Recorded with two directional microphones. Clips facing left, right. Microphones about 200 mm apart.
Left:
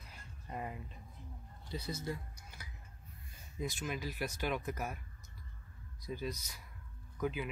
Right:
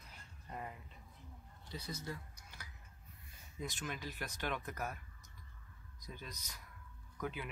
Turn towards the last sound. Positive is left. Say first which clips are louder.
# left 6 dB
turn(degrees=5)  # may be behind; listen again after turning